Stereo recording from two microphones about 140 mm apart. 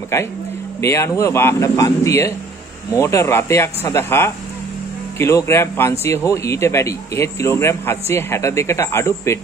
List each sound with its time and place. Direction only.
0.7 s a man's voice: 20° left (ahead or behind)